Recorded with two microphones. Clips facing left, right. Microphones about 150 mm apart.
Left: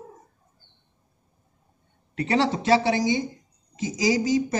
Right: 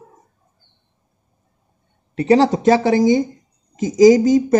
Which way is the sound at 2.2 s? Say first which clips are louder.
Right 9 dB; 35° right (ahead or behind).